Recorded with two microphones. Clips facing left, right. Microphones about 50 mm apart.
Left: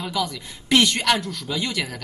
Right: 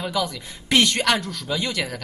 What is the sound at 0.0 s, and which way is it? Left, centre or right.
Speech, centre.